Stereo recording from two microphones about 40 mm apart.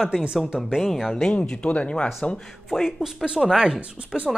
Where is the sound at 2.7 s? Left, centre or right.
Centre.